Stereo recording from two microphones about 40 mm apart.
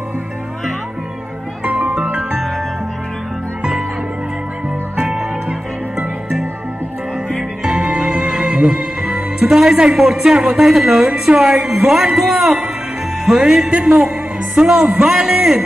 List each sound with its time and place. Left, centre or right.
1.6 s music: right
7.6 s music: right
9.9 s speech: centre
13.2 s music: centre
13.7 s speech: right
14.6 s speech: right
15.0 s speech: centre